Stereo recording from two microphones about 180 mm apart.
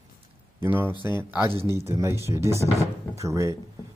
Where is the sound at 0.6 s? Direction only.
10° right (ahead or behind).